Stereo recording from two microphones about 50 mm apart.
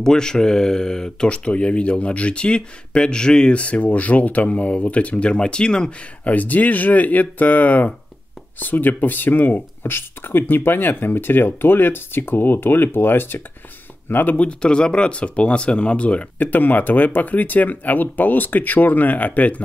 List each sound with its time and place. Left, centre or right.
0.0 s speech: centre
6.2 s speech: left
14.3 s speech: left
16.3 s speech: left